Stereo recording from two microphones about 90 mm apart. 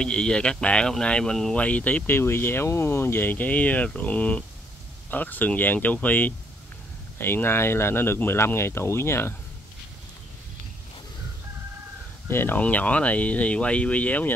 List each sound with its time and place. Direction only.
0.0 s speech: 10° left (ahead or behind); by 9.3 s 30° left (ahead or behind)
12.3 s speech: 25° left (ahead or behind)